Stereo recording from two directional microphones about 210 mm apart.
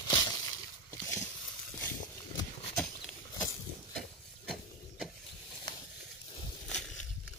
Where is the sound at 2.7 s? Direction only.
5° left (ahead or behind).